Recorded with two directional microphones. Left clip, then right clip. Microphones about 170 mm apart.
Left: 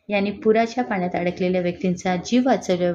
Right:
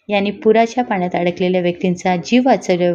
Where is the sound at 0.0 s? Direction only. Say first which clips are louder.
Right 6 dB; 15° right (ahead or behind).